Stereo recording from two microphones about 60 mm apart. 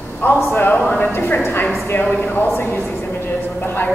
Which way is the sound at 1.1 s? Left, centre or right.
Left.